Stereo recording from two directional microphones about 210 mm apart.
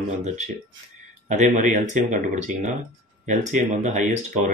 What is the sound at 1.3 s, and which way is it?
Speech, 35° right (ahead or behind).